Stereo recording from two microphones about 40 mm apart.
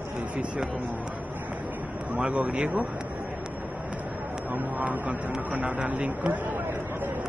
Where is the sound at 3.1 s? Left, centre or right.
Right.